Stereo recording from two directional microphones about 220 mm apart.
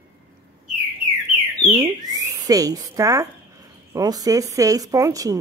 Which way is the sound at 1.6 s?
15° right (ahead or behind).